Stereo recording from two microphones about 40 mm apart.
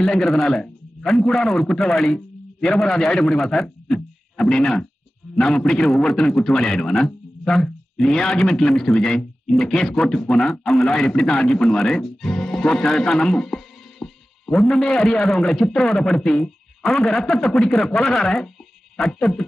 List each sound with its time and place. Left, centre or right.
0.0 s speech: centre
1.5 s a man's voice: centre
3.1 s speech: left
3.8 s a man's voice: centre
10.5 s speech: centre
14.8 s speech: centre
15.6 s a man's voice: left